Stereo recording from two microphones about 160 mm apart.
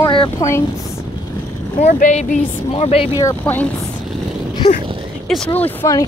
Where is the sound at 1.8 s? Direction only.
45° left (ahead or behind).